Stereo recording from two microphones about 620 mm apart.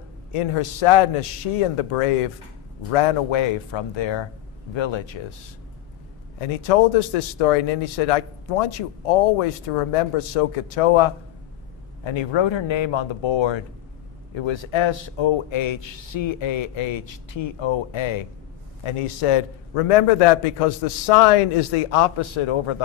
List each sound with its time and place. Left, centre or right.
0.3 s a man's voice: left
6.4 s a man's voice: left